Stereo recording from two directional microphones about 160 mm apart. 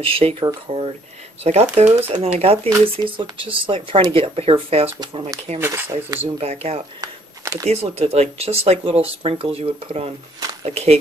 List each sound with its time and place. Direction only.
0.0 s speech: 35° right (ahead or behind)
5.6 s speech: 15° right (ahead or behind)
6.3 s speech: 40° right (ahead or behind)
7.0 s a sound: 20° right (ahead or behind)
7.7 s speech: 40° right (ahead or behind)